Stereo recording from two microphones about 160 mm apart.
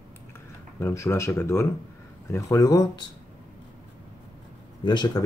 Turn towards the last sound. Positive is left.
turn(degrees=30)  # may be behind; listen again after turning